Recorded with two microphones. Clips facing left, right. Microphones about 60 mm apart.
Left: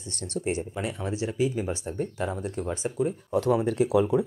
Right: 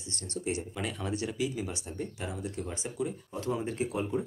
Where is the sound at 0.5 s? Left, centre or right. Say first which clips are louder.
Left 4 dB; left.